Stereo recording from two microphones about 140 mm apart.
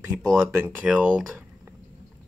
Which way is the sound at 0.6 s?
10° right (ahead or behind).